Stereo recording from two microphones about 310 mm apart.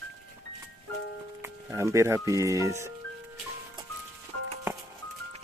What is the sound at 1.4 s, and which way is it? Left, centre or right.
Speech, centre.